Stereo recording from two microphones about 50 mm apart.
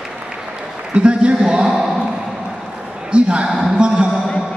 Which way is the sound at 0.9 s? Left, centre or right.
Right.